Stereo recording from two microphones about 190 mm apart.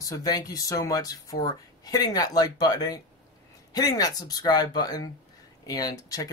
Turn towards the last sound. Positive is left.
turn(degrees=20)  # may be behind; listen again after turning